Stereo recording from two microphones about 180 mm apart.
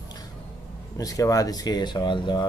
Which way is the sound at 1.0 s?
20° left (ahead or behind).